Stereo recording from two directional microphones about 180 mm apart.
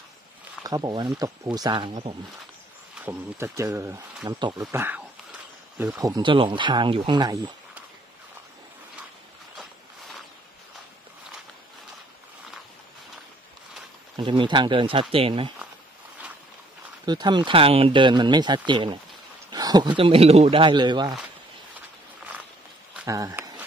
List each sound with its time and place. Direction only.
0.7 s speech: 20° right (ahead or behind)
3.1 s speech: 15° right (ahead or behind)
14.1 s speech: 25° right (ahead or behind)
17.0 s speech: 25° right (ahead or behind)
23.0 s speech: 20° right (ahead or behind)